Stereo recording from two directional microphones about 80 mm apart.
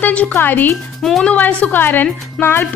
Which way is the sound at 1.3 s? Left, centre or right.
Centre.